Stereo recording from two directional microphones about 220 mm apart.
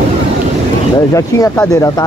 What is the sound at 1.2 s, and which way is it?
Speech, 15° left (ahead or behind).